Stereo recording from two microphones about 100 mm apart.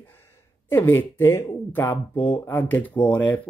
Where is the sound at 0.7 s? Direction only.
20° left (ahead or behind).